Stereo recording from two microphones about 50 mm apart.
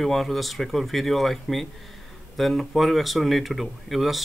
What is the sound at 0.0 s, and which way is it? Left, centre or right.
Speech, centre.